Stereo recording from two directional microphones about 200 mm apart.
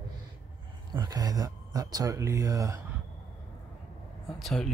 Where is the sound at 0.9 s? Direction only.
20° right (ahead or behind).